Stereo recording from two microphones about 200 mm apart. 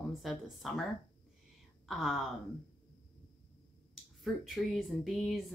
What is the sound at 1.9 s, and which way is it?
Speech, centre (ahead or behind).